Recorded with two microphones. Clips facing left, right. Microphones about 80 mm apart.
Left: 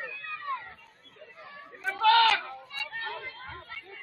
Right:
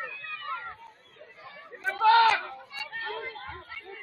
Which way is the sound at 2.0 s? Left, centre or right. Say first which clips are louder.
Right 2 dB; centre.